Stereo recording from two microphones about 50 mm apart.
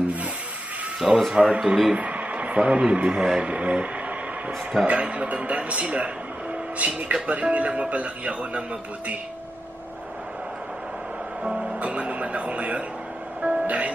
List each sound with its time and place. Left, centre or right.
0.9 s speech: centre
2.0 s speech: right
11.4 s music: centre
11.8 s music: right